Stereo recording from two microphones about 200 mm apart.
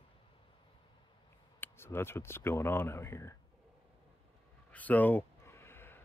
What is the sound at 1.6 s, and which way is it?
Speech, 10° left (ahead or behind).